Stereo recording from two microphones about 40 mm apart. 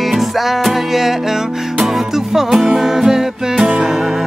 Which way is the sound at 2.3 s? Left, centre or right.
Centre.